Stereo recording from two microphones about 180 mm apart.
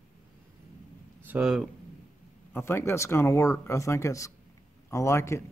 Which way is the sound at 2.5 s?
15° left (ahead or behind).